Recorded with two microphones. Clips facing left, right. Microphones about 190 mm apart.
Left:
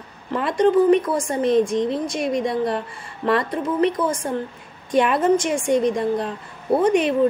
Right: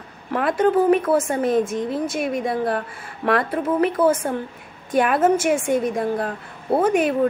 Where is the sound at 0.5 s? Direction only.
5° right (ahead or behind).